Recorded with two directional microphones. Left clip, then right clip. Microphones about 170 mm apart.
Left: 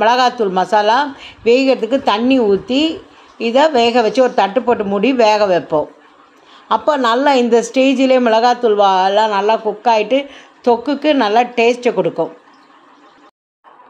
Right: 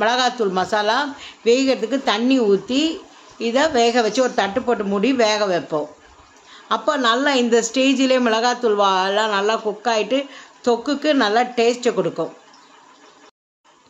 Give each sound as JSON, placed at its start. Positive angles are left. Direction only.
{"t": 0.0, "sound": "speech", "side_deg": 20}